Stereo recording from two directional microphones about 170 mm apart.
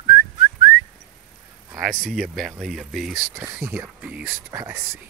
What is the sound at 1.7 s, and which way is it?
Speech, 5° right (ahead or behind).